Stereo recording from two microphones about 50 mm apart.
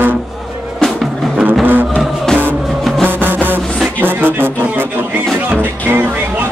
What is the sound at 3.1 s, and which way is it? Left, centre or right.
Music, right.